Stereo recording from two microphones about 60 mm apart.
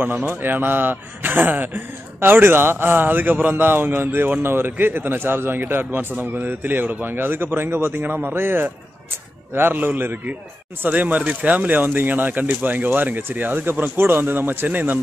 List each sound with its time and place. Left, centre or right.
0.3 s a man's voice: right